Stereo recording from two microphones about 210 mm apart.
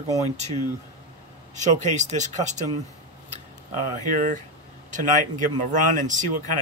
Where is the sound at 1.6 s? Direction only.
35° right (ahead or behind).